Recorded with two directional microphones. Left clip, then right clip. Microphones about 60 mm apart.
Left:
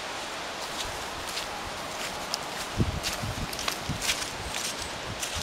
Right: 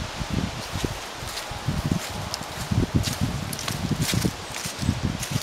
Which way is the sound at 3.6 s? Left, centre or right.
Centre.